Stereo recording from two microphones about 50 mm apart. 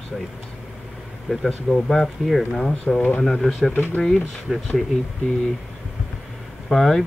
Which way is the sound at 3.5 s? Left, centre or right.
Centre.